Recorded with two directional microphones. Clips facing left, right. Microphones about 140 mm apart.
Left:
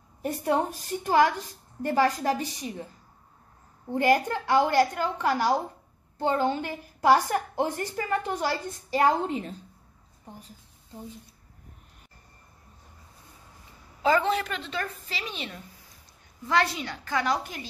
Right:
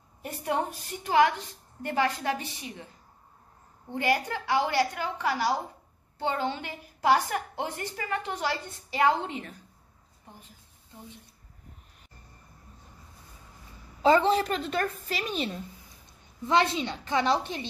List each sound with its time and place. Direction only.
0.2 s a woman's voice: 40° left (ahead or behind)
3.9 s a woman's voice: 45° left (ahead or behind)
14.0 s a woman's voice: 30° right (ahead or behind)
16.4 s a woman's voice: 20° right (ahead or behind)